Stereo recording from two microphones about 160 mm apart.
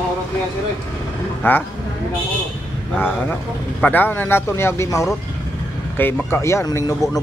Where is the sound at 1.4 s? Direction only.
10° left (ahead or behind).